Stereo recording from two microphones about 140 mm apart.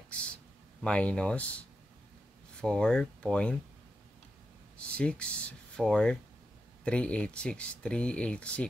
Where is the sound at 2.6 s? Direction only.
5° left (ahead or behind).